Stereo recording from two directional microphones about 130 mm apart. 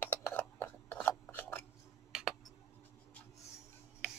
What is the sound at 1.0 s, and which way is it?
Filing, 15° left (ahead or behind).